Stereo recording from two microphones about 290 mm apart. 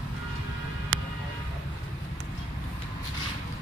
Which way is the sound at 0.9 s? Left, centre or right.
Right.